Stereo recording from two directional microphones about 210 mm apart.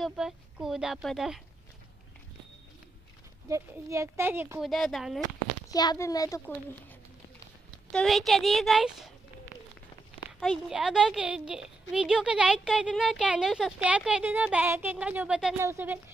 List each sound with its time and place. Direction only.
0.0 s speech: centre (ahead or behind)
3.4 s speech: 15° right (ahead or behind)
4.6 s speech: centre (ahead or behind)
5.7 s a child's voice: 20° left (ahead or behind)
7.9 s speech: centre (ahead or behind)
10.7 s speech: 5° right (ahead or behind)